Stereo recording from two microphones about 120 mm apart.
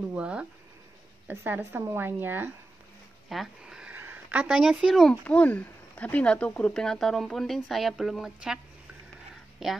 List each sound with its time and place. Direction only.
0.1 s a woman's voice: 10° right (ahead or behind)
3.3 s a sound: 5° right (ahead or behind)
4.0 s speech: 15° right (ahead or behind)
5.2 s speech: 10° left (ahead or behind); by 8.5 s 5° right (ahead or behind)
9.6 s speech: 5° right (ahead or behind)